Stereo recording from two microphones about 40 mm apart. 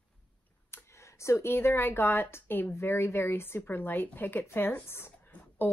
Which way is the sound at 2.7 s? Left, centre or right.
Left.